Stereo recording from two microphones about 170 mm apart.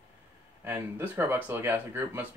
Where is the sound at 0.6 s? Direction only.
15° right (ahead or behind).